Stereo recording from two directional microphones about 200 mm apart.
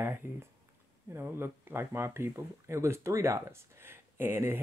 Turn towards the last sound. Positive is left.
turn(degrees=-10)  # may be behind; listen again after turning